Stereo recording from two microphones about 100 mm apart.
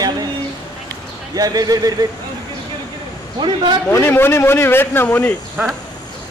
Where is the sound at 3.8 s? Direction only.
25° left (ahead or behind).